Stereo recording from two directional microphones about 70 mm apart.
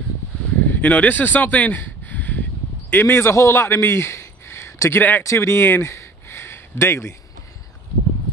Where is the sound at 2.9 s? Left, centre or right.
Left.